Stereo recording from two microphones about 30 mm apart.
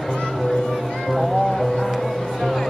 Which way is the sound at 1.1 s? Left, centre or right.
Centre.